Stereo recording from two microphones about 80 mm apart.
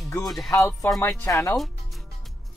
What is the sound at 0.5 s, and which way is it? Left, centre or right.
Speech, left.